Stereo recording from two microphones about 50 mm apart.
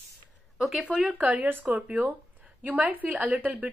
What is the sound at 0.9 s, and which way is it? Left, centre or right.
Speech, right.